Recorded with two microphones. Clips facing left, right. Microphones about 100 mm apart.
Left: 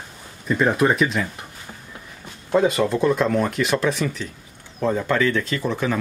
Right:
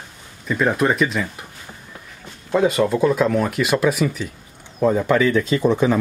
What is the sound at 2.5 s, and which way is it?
Speech, centre (ahead or behind).